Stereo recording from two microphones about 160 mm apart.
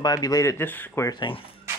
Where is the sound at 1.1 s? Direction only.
30° left (ahead or behind).